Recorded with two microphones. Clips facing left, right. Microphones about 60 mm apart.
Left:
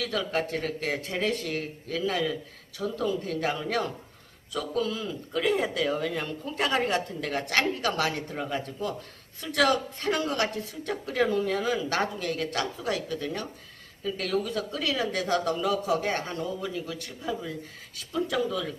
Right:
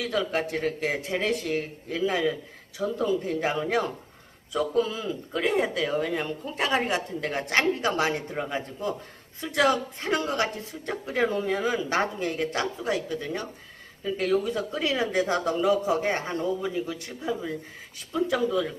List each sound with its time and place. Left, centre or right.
0.0 s a woman's voice: centre